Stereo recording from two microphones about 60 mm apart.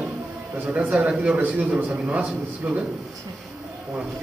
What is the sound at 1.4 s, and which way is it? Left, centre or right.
A man's voice, right.